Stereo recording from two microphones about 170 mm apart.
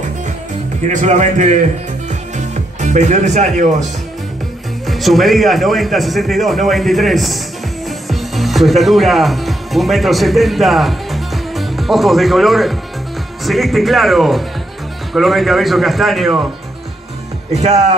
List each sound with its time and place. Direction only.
0.8 s speech: 45° right (ahead or behind)
2.0 s music: 45° right (ahead or behind)
4.8 s a man's voice: centre (ahead or behind)
17.6 s speech: 45° right (ahead or behind)